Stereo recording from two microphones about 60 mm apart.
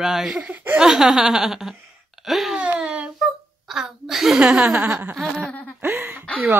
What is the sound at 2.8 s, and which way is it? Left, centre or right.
Speech, centre.